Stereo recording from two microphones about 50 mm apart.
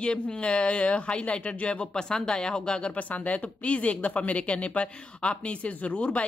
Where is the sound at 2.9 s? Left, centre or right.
Left.